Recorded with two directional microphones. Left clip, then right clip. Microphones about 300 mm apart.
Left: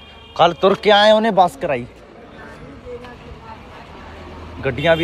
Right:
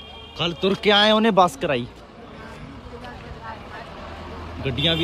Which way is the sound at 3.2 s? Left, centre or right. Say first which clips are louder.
Right 1 dB; centre.